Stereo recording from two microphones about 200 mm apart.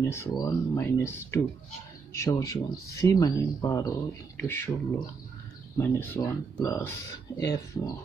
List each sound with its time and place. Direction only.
0.0 s speech: 15° left (ahead or behind)
5.8 s speech: 10° left (ahead or behind)